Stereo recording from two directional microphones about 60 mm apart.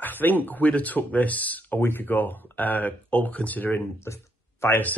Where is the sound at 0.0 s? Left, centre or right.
Left.